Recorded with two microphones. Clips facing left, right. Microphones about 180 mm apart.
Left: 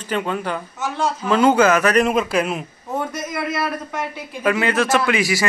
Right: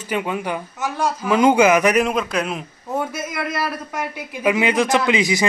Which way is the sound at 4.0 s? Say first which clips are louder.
Even; 10° right (ahead or behind).